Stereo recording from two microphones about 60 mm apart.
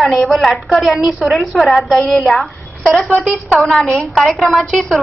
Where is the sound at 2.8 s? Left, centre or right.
Centre.